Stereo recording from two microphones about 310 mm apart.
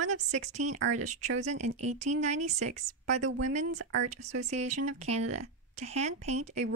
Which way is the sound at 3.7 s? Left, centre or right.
Right.